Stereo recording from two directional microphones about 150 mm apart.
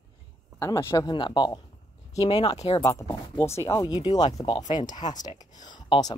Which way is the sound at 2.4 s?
45° left (ahead or behind).